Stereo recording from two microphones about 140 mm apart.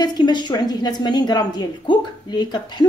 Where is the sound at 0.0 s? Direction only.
30° left (ahead or behind).